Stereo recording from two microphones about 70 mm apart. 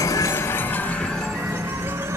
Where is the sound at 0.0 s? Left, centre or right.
Left.